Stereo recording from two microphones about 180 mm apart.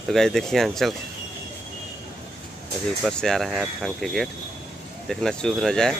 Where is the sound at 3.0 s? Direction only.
Centre (ahead or behind).